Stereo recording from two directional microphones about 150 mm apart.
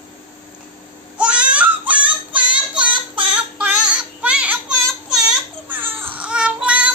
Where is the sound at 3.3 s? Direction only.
10° right (ahead or behind).